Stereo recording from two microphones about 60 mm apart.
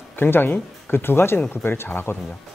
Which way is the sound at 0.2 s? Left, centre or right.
Left.